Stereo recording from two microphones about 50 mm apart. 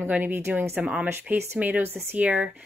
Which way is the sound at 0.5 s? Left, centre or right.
Right.